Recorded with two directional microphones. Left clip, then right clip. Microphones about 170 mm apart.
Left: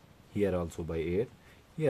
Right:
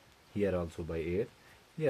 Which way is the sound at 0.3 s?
25° left (ahead or behind).